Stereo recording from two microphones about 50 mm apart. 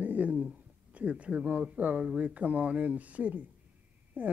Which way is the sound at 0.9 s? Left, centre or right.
Right.